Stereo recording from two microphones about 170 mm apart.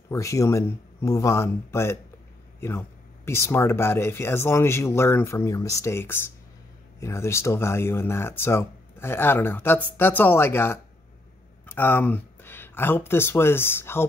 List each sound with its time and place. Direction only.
0.1 s speech: 20° left (ahead or behind)
3.3 s speech: 15° left (ahead or behind)